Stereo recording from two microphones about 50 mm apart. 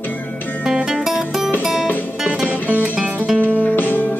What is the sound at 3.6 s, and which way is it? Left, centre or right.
Music, left.